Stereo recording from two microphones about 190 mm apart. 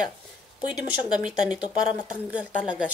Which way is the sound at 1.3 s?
5° right (ahead or behind).